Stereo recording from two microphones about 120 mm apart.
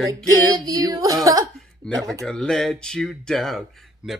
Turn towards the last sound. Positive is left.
turn(degrees=-5)  # may be behind; listen again after turning